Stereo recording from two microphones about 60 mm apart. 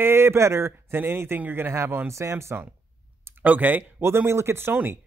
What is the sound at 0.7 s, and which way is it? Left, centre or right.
Speech, right.